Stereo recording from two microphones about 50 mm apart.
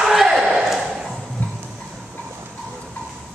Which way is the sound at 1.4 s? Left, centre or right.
Left.